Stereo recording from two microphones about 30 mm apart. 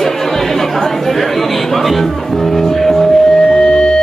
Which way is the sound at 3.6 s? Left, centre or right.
Left.